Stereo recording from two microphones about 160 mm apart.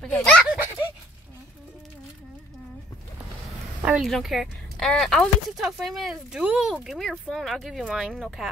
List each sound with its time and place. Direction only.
0.0 s speech: 5° left (ahead or behind)
3.8 s speech: 5° right (ahead or behind)